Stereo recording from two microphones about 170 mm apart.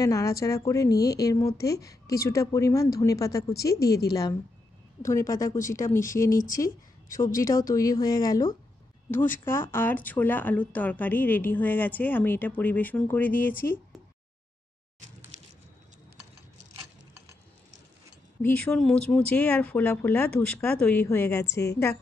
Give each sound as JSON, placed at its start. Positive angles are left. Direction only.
{"t": 0.0, "sound": "speech", "side_deg": 20}
{"t": 3.7, "sound": "a woman's voice", "side_deg": 70}
{"t": 4.1, "sound": "speech", "side_deg": 20}
{"t": 6.3, "sound": "speech", "side_deg": 55}
{"t": 7.3, "sound": "speech", "side_deg": 20}
{"t": 18.4, "sound": "speech", "side_deg": 5}